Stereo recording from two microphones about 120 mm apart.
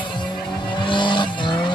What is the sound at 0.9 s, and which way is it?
Vehicle, 40° left (ahead or behind).